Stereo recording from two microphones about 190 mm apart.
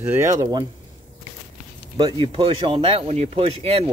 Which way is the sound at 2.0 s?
25° right (ahead or behind).